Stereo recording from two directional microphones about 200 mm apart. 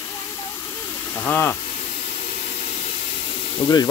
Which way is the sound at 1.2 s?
10° left (ahead or behind).